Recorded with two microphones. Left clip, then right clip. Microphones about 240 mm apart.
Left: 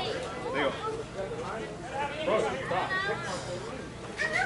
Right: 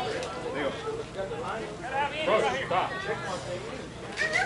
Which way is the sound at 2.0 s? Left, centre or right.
Centre.